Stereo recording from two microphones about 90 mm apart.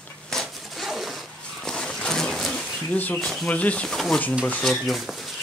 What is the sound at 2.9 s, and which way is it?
Speech, 15° left (ahead or behind).